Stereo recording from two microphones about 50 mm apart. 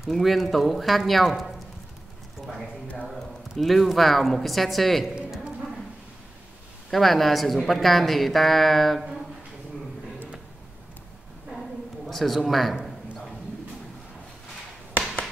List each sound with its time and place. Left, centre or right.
0.1 s speech: centre
3.1 s a woman's voice: centre
5.1 s a sound: centre
6.9 s speech: centre
12.1 s speech: centre